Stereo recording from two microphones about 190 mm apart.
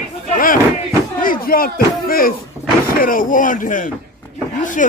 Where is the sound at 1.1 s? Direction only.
50° left (ahead or behind).